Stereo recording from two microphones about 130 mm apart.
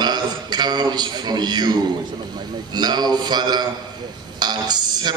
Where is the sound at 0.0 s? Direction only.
35° right (ahead or behind).